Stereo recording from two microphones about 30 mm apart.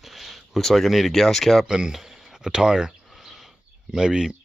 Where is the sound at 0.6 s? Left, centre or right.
Centre.